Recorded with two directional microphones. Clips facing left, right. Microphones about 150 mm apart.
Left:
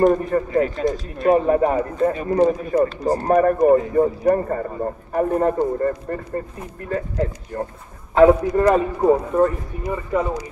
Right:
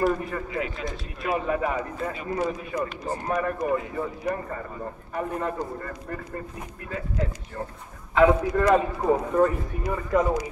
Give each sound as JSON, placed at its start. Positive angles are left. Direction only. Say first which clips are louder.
{"t": 0.0, "sound": "speech", "louder": "left 8 dB", "side_deg": 40}
{"t": 8.6, "sound": "a man's voice", "louder": "left 5 dB", "side_deg": 10}